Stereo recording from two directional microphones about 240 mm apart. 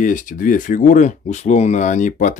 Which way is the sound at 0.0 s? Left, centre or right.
Left.